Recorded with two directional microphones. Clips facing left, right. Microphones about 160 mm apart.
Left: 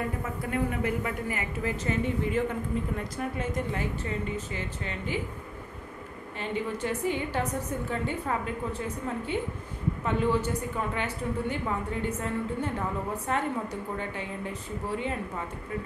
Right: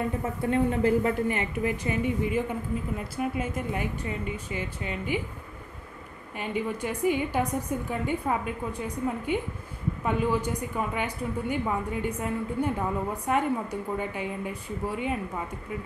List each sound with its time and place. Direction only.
0.2 s a woman's voice: 30° right (ahead or behind); by 5.2 s 15° right (ahead or behind)
6.3 s a woman's voice: 15° right (ahead or behind)